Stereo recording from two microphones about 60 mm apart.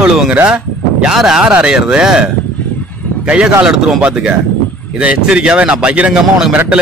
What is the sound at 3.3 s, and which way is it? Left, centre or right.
A man's voice, centre.